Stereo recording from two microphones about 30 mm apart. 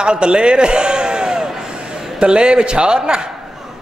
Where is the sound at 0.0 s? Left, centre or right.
Right.